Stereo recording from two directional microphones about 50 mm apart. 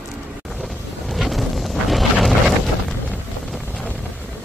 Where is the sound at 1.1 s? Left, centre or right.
Centre.